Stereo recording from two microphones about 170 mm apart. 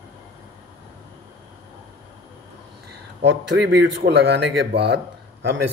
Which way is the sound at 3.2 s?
90° right.